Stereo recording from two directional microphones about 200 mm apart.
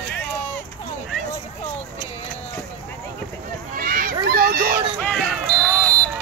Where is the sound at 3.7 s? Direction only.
45° right (ahead or behind).